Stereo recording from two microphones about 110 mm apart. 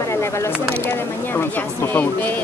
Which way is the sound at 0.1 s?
25° left (ahead or behind).